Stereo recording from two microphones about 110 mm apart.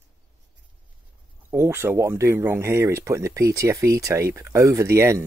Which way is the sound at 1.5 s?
20° right (ahead or behind).